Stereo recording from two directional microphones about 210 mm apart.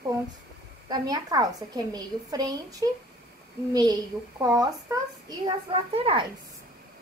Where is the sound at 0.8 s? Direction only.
20° right (ahead or behind).